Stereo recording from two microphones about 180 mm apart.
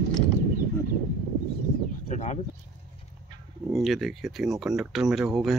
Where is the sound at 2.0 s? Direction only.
45° left (ahead or behind).